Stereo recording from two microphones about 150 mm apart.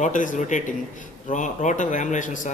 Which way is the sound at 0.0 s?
60° left (ahead or behind).